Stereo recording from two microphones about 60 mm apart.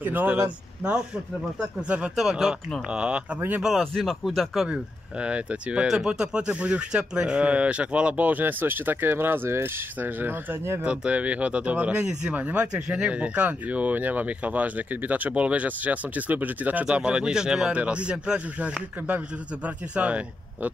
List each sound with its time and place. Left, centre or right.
0.0 s speech: right
2.1 s speech: centre
2.9 s speech: centre
3.3 s speech: right
3.8 s speech: centre
5.2 s speech: right
5.9 s speech: centre; by 10.6 s right
10.8 s speech: right
12.0 s speech: centre
12.3 s speech: right
16.8 s speech: centre